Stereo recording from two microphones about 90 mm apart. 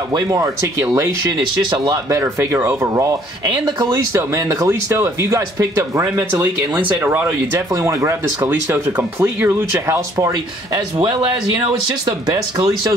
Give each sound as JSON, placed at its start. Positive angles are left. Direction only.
{"t": 0.1, "sound": "speech", "side_deg": -45}
{"t": 2.0, "sound": "speech", "side_deg": -35}
{"t": 2.8, "sound": "speech", "side_deg": -35}
{"t": 3.4, "sound": "speech", "side_deg": -50}
{"t": 3.9, "sound": "speech", "side_deg": -35}
{"t": 6.4, "sound": "speech", "side_deg": -20}
{"t": 7.5, "sound": "speech", "side_deg": -35}
{"t": 12.1, "sound": "speech", "side_deg": -45}